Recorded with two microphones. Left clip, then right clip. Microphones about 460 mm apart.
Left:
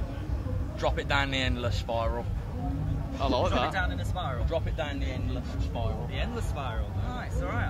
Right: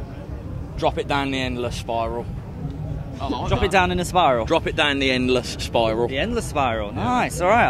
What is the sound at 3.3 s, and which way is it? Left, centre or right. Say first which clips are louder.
Speech: right 2 dB; left.